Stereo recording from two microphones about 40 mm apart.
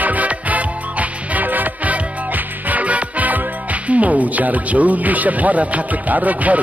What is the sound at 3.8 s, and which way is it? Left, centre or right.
Speech, right.